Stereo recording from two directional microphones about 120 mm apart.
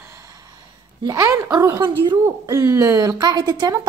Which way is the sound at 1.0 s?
30° right (ahead or behind).